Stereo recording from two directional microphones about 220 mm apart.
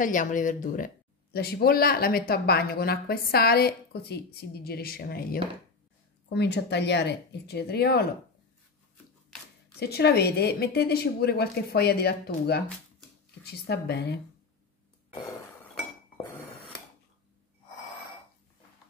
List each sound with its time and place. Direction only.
0.0 s speech: 35° left (ahead or behind)
9.8 s speech: 45° left (ahead or behind)